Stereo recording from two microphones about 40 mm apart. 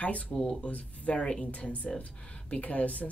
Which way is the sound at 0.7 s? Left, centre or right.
Left.